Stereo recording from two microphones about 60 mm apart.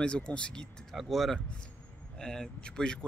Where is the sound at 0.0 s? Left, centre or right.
Centre.